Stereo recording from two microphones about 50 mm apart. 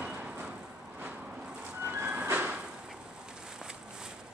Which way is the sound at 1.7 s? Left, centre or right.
Right.